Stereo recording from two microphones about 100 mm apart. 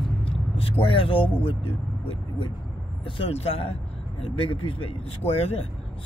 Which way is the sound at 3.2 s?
85° left.